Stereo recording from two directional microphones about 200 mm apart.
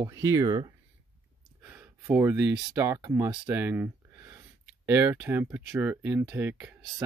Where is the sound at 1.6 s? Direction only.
10° right (ahead or behind).